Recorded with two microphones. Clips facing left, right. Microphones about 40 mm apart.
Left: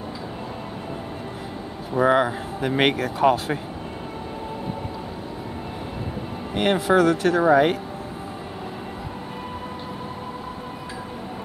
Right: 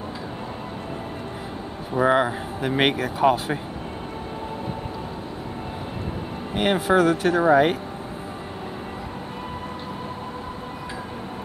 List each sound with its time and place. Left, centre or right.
2.0 s speech: centre
6.5 s speech: centre